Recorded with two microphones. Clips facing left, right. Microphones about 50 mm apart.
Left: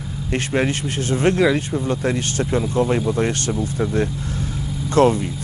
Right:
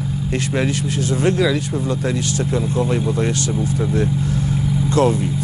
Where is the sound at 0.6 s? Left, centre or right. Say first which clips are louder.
Even; left.